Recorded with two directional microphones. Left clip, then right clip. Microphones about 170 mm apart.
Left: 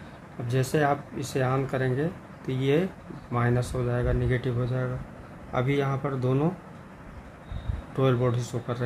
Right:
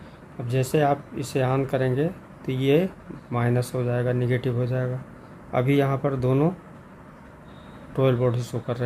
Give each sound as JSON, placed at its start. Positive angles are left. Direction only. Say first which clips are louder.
{"t": 0.5, "sound": "speech", "louder": "right 3 dB", "side_deg": -20}
{"t": 8.0, "sound": "speech", "louder": "right 3 dB", "side_deg": -25}